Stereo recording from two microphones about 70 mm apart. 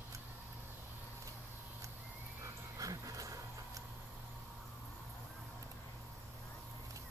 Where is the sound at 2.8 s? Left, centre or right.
Right.